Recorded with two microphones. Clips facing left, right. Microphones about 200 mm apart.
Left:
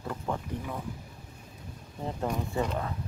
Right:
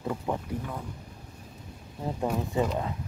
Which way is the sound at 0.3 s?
15° right (ahead or behind).